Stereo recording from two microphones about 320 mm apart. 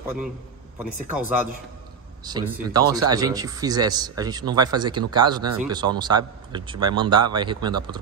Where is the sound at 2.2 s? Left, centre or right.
Centre.